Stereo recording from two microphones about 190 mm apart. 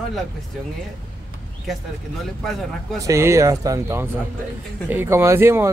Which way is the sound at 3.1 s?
15° right (ahead or behind).